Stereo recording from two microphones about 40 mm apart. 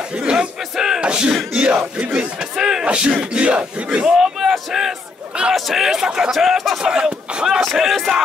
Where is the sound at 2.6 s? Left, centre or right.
Centre.